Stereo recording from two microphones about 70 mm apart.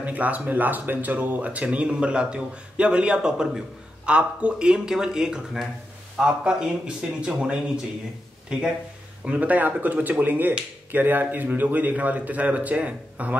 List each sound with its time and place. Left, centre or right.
0.0 s speech: right